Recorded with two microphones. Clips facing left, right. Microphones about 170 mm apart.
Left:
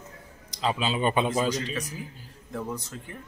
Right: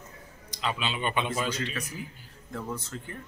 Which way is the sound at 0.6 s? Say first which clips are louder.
Left 5 dB; 35° left (ahead or behind).